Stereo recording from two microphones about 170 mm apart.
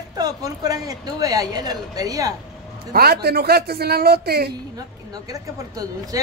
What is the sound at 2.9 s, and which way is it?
Speech, 65° right (ahead or behind).